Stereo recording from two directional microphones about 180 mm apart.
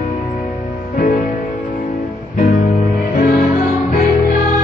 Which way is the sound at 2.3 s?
40° left (ahead or behind).